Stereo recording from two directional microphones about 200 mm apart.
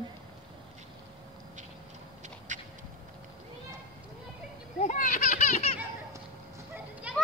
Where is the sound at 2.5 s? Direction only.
40° right (ahead or behind).